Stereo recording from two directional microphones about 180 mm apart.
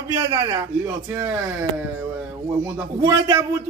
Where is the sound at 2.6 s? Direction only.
15° right (ahead or behind).